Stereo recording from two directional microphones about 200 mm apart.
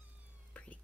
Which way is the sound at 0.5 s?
5° left (ahead or behind).